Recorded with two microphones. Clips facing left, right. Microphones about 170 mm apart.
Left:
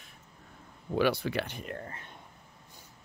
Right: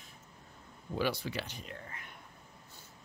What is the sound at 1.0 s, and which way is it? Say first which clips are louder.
Speech: left 6 dB; 60° left (ahead or behind).